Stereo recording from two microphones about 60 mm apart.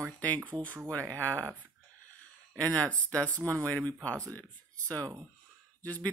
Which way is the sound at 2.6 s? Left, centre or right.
Left.